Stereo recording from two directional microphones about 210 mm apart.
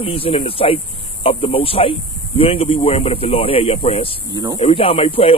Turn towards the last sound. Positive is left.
turn(degrees=25)  # may be behind; listen again after turning